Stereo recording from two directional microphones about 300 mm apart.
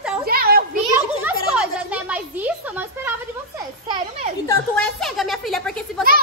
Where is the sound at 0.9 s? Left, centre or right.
Centre.